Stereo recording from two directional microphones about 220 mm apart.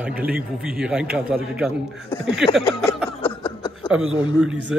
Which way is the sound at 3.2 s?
25° left (ahead or behind).